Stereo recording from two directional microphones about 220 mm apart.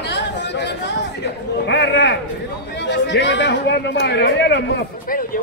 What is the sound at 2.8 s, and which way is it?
A man's voice, 50° left (ahead or behind).